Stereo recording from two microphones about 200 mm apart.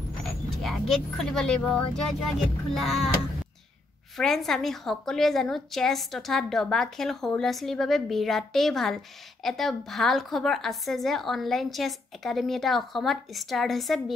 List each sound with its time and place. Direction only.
0.6 s a woman's voice: centre (ahead or behind)
4.2 s a woman's voice: centre (ahead or behind)